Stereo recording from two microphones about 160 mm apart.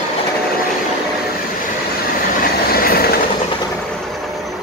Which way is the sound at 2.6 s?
70° left (ahead or behind).